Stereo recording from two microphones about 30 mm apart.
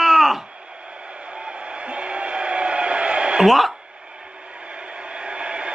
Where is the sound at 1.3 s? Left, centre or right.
Right.